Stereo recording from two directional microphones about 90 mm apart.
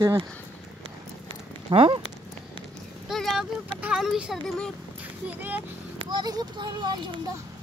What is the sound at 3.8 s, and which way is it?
Speech, 5° right (ahead or behind).